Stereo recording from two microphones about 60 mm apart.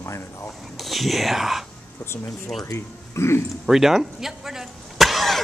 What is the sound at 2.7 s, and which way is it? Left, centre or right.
Speech, left.